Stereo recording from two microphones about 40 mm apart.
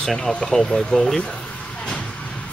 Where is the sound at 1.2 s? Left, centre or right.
Left.